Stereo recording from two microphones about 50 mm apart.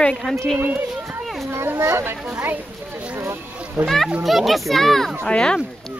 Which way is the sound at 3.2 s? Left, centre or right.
Right.